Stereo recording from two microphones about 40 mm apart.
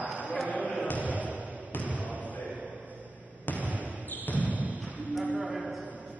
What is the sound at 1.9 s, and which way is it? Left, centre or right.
Basketball bounce, right.